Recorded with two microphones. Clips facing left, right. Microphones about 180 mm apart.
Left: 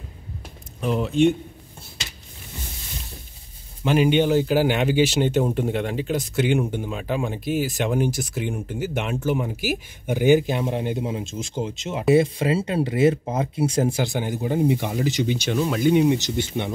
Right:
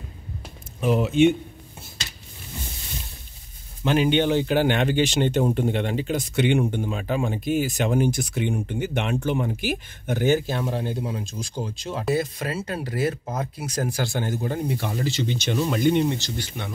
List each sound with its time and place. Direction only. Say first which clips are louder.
0.7 s speech: right 1 dB; 5° right (ahead or behind)
3.8 s speech: left 2 dB; 5° left (ahead or behind)
16.2 s speech: left 7 dB; 20° left (ahead or behind)